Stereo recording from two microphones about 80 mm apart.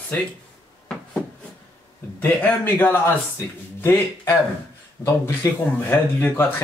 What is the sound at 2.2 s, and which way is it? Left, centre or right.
Speech, left.